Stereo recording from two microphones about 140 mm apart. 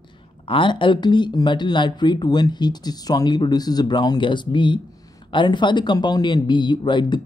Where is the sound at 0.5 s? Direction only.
35° left (ahead or behind).